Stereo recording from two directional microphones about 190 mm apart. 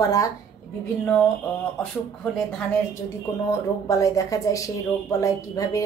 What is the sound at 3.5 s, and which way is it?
Speech, 15° left (ahead or behind).